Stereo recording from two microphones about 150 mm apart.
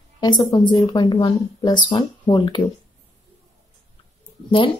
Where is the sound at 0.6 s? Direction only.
30° left (ahead or behind).